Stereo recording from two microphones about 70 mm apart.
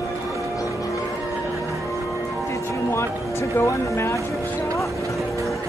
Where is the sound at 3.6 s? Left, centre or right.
Left.